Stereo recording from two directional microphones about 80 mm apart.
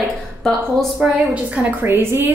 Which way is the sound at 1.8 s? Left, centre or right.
Right.